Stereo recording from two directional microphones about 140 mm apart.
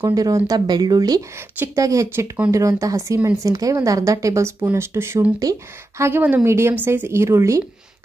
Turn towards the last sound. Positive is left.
turn(degrees=-20)  # may be behind; listen again after turning